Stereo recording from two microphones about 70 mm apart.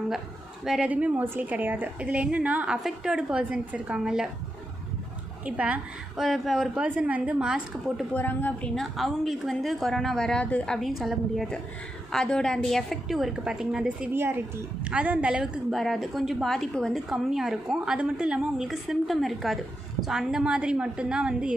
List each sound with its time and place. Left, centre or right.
0.8 s a woman's voice: right
5.4 s a woman's voice: centre
6.1 s speech: centre
6.8 s a woman's voice: centre
8.1 s a woman's voice: left
8.9 s a woman's voice: centre
14.1 s speech: right
14.9 s a woman's voice: centre
15.7 s speech: centre
17.1 s a woman's voice: centre
18.7 s a woman's voice: centre